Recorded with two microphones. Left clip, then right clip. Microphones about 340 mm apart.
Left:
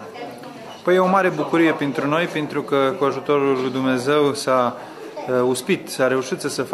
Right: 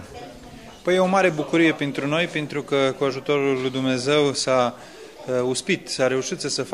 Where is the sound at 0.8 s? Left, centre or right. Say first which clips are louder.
Left 2 dB; right.